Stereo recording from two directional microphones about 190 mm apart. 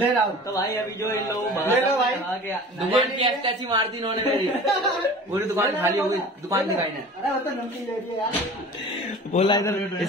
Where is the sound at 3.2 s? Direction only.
25° right (ahead or behind).